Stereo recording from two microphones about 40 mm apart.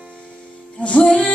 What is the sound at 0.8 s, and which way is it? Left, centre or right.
Music, left.